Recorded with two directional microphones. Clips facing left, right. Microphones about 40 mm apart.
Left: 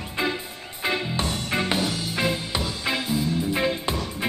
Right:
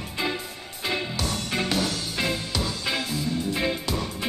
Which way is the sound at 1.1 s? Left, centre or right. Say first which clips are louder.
Left 2 dB; left.